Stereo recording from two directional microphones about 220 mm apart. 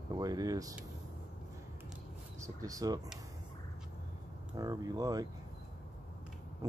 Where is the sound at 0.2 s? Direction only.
15° right (ahead or behind).